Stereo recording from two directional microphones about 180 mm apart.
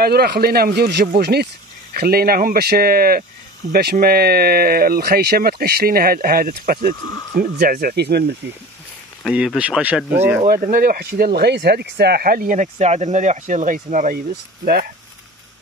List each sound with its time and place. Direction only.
0.0 s speech: 60° right (ahead or behind)
9.2 s speech: 5° right (ahead or behind)
10.4 s speech: 55° right (ahead or behind)